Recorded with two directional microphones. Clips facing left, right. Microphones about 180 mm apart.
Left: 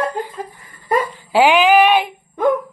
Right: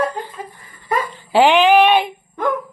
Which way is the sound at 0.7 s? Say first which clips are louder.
Left 3 dB; 10° left (ahead or behind).